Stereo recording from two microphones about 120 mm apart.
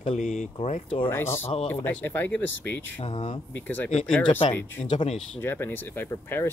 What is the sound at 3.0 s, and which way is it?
Speech, 50° left (ahead or behind).